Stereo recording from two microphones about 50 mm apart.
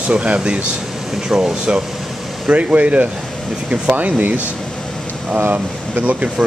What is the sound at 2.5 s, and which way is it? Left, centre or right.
Speech, right.